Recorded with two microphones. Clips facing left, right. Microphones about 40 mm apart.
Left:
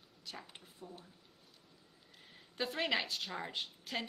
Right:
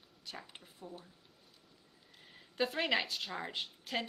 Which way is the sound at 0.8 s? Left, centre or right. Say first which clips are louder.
Right 2 dB; right.